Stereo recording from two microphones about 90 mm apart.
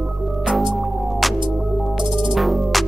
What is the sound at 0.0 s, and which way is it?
Music, 5° right (ahead or behind).